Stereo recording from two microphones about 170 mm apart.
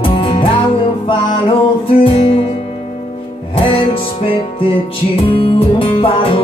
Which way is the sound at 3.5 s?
30° left (ahead or behind).